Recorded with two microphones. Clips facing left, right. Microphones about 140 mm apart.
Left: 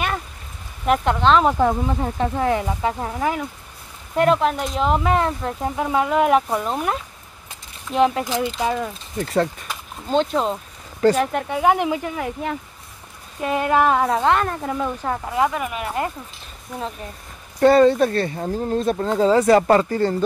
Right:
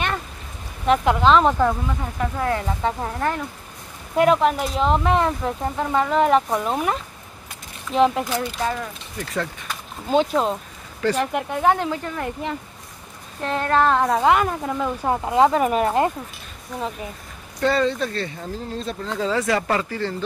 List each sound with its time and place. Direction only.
0.8 s speech: centre (ahead or behind)
1.6 s speech: 30° left (ahead or behind)
2.8 s speech: 5° left (ahead or behind)
9.2 s speech: 35° left (ahead or behind)
10.0 s speech: 5° right (ahead or behind)
15.0 s speech: 20° right (ahead or behind)
16.7 s speech: centre (ahead or behind)
17.6 s speech: 45° left (ahead or behind)